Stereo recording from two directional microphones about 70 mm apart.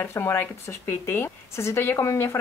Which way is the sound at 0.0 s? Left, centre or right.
Left.